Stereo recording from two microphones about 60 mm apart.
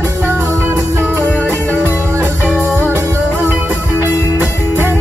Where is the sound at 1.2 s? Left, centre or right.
Left.